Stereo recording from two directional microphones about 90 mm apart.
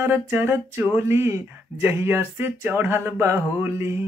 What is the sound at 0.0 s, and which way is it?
Speech, 25° right (ahead or behind).